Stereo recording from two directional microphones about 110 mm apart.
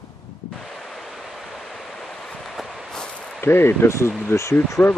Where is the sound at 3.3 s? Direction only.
20° left (ahead or behind).